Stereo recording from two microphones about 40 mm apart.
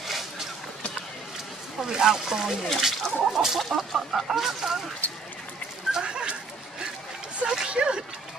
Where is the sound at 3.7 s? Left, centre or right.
Centre.